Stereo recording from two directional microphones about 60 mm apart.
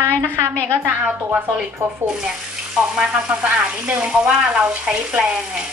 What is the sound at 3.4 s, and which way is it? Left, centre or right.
Speech, centre.